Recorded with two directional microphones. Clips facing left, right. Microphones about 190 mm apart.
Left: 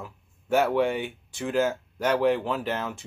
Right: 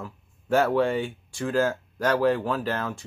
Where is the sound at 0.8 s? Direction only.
15° left (ahead or behind).